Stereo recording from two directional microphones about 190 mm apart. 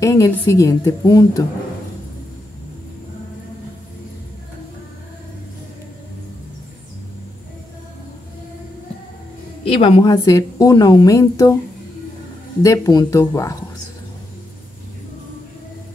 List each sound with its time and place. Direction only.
0.0 s a woman's voice: 15° left (ahead or behind)
9.7 s a woman's voice: 30° left (ahead or behind)
12.6 s a woman's voice: 15° left (ahead or behind)